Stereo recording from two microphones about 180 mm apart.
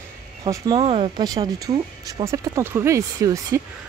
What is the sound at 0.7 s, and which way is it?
Speech, 30° right (ahead or behind).